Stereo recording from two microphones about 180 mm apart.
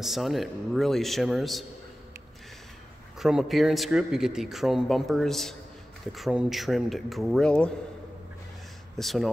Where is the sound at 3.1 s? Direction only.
5° right (ahead or behind).